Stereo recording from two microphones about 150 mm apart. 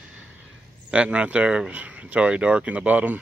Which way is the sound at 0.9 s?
5° right (ahead or behind).